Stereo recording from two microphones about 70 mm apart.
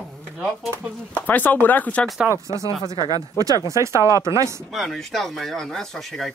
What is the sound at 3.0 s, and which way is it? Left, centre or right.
Speech, right.